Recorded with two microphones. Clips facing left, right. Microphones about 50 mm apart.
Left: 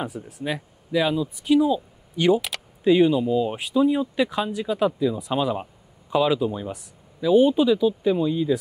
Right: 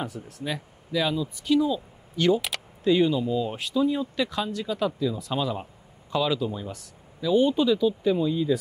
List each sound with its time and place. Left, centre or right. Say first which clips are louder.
0.0 s speech: left 3 dB; centre